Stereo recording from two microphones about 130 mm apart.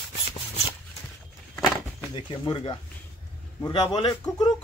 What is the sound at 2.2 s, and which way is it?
A man's voice, 40° left (ahead or behind).